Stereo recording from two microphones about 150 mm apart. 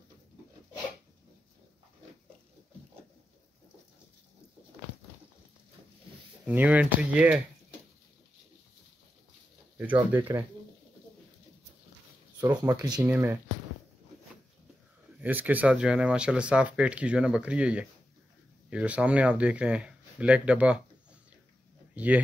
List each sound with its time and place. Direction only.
6.4 s speech: 10° right (ahead or behind)
10.1 s speech: 15° right (ahead or behind)
12.4 s speech: 25° right (ahead or behind)
13.0 s speech: 15° right (ahead or behind)
15.2 s speech: 10° right (ahead or behind)
21.9 s a sound: 10° right (ahead or behind)